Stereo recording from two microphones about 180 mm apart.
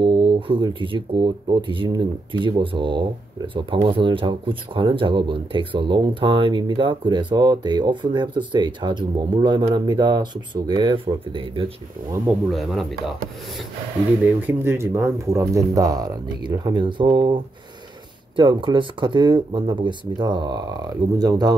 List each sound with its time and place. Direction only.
0.0 s speech: 25° right (ahead or behind)
12.3 s speech: centre (ahead or behind)
14.2 s speech: 10° right (ahead or behind)